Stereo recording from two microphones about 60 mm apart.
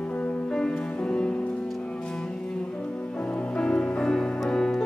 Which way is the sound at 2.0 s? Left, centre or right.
Centre.